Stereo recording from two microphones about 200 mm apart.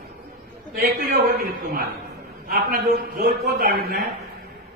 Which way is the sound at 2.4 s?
45° right (ahead or behind).